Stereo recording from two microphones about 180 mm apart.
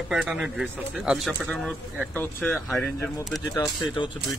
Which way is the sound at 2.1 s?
10° left (ahead or behind).